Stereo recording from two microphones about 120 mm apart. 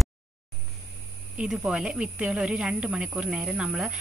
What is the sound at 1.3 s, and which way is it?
A woman's voice, 5° right (ahead or behind).